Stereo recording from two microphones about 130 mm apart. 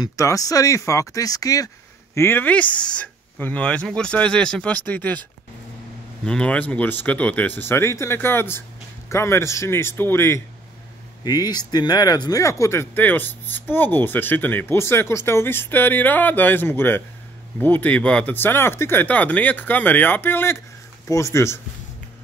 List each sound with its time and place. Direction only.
0.0 s speech: 25° left (ahead or behind)
2.1 s speech: 15° left (ahead or behind)
6.2 s speech: 10° left (ahead or behind)
11.2 s speech: 30° left (ahead or behind)